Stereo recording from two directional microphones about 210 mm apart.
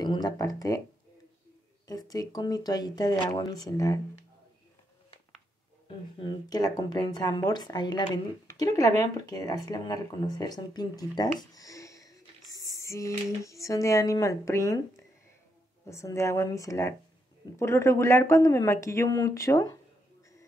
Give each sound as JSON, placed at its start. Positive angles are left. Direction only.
{"t": 0.0, "sound": "speech", "side_deg": 20}
{"t": 1.9, "sound": "speech", "side_deg": 15}
{"t": 5.9, "sound": "speech", "side_deg": 20}
{"t": 12.7, "sound": "a sound", "side_deg": 15}
{"t": 13.4, "sound": "speech", "side_deg": 15}
{"t": 15.9, "sound": "speech", "side_deg": 15}